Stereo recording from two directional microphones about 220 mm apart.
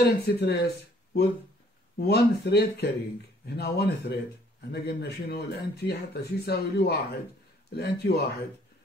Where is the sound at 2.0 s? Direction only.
45° left (ahead or behind).